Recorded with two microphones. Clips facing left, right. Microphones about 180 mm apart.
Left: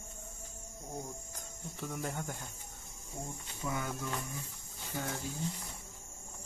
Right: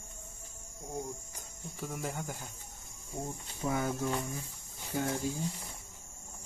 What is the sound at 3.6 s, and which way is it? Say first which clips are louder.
Speech: right 5 dB; 30° right (ahead or behind).